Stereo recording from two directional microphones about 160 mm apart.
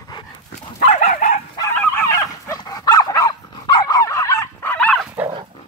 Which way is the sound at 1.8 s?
15° left (ahead or behind).